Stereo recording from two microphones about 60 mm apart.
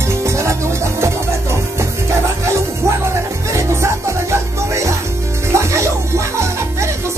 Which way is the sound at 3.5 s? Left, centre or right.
Right.